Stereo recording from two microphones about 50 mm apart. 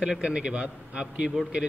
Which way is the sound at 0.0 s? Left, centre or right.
Centre.